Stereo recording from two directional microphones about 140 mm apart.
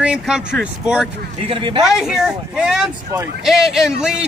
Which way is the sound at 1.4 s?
35° right (ahead or behind).